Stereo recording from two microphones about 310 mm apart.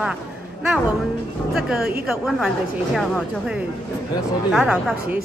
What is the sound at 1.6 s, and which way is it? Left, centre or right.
A woman's voice, centre.